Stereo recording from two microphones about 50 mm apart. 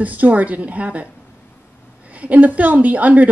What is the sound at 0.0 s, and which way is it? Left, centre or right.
A woman's voice, right.